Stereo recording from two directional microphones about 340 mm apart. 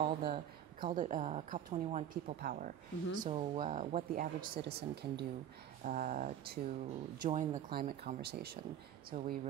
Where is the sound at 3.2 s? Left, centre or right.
Centre.